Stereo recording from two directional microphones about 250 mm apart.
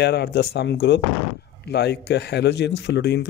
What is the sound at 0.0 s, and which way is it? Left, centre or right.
Speech, left.